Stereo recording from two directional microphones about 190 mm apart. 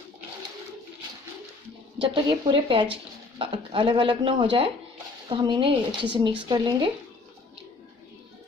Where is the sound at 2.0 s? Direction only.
25° right (ahead or behind).